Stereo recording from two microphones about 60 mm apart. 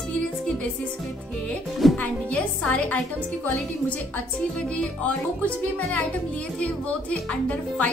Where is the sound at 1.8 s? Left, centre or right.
Centre.